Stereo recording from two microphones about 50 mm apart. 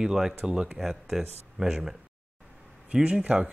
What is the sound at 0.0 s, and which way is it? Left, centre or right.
Speech, centre.